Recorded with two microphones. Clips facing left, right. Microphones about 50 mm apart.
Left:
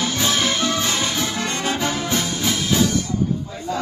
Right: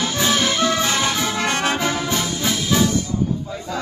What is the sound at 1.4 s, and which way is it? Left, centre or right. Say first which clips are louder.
Music: right 3 dB; right.